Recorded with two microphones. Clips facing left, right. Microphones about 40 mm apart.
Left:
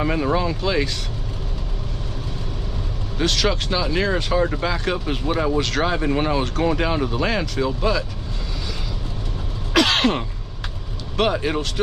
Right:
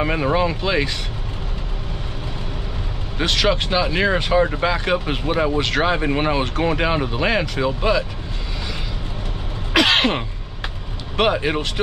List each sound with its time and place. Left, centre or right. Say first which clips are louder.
0.0 s speech: right 2 dB; right
3.2 s speech: right 2 dB; right
9.8 s speech: right 1 dB; centre